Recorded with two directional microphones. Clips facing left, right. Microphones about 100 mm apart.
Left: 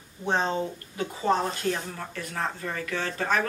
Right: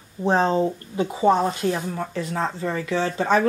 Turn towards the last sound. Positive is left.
turn(degrees=-25)  # may be behind; listen again after turning